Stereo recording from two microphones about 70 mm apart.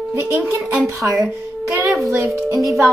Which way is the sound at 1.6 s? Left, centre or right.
Right.